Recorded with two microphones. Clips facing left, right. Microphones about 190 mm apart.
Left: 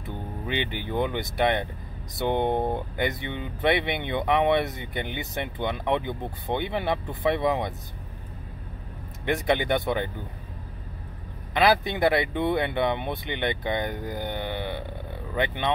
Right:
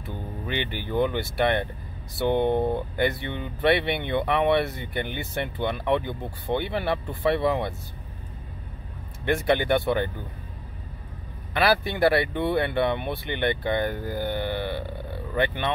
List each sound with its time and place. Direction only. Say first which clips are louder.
0.5 s speech: even; 20° left (ahead or behind)
9.2 s speech: right 2 dB; 15° left (ahead or behind)
11.5 s speech: left 1 dB; 20° left (ahead or behind)